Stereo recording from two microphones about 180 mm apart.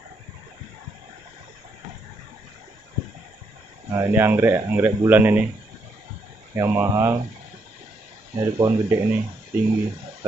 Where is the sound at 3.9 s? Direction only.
15° right (ahead or behind).